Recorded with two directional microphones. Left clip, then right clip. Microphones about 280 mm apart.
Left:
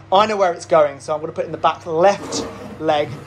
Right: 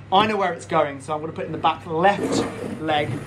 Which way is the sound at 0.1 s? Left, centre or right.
Left.